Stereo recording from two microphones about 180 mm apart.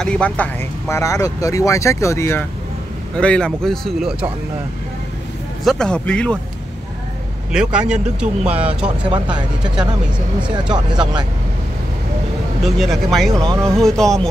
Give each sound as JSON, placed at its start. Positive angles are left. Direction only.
{"t": 0.0, "sound": "speech", "side_deg": 5}
{"t": 5.6, "sound": "speech", "side_deg": 0}
{"t": 7.5, "sound": "speech", "side_deg": -5}
{"t": 12.6, "sound": "speech", "side_deg": 0}